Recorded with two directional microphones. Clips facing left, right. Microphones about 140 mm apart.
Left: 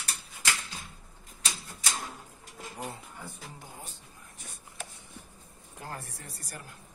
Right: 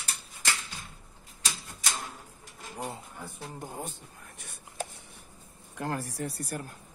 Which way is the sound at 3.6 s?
50° right (ahead or behind).